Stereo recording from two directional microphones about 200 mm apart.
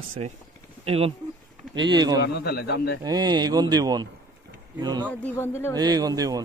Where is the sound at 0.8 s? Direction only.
30° right (ahead or behind).